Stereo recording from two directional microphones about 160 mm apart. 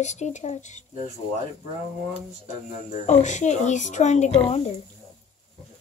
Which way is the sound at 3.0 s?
45° left (ahead or behind).